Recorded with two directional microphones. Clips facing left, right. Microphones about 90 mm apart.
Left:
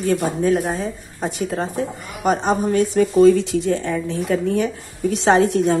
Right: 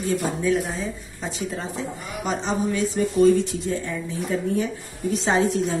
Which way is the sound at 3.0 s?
90° left.